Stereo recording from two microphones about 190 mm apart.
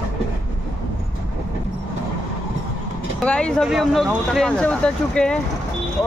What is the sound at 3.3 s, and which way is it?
Speech, 5° left (ahead or behind).